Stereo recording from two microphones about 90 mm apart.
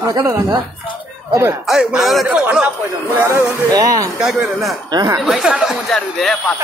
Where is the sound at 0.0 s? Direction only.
35° right (ahead or behind).